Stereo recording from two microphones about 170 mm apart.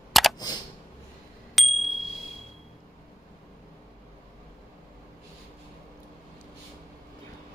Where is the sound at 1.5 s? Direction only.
Centre (ahead or behind).